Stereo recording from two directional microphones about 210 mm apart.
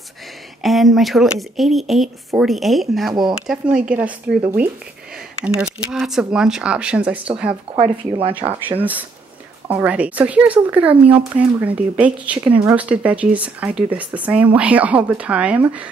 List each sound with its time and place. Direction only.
0.6 s speech: centre (ahead or behind)
5.4 s speech: 5° right (ahead or behind)
7.7 s speech: 30° right (ahead or behind)
8.7 s speech: 10° right (ahead or behind)